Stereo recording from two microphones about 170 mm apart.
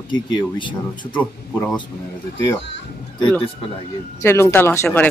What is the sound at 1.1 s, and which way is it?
Speech, 5° left (ahead or behind).